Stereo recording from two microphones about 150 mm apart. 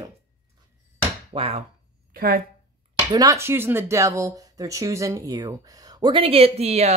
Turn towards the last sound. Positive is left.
turn(degrees=-45)  # may be behind; listen again after turning